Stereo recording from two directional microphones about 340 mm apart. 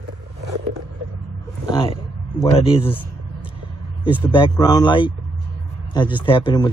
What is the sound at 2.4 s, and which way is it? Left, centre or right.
Speech, centre.